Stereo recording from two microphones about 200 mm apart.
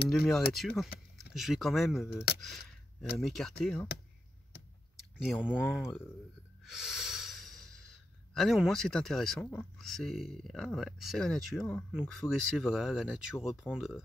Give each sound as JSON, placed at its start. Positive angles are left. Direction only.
{"t": 0.1, "sound": "speech", "side_deg": 0}
{"t": 2.4, "sound": "a sound", "side_deg": 0}
{"t": 3.2, "sound": "speech", "side_deg": 0}
{"t": 5.3, "sound": "speech", "side_deg": -5}
{"t": 6.6, "sound": "snort", "side_deg": 0}
{"t": 8.4, "sound": "speech", "side_deg": 0}